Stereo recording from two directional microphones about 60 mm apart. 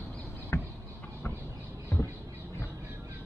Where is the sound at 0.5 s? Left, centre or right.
Left.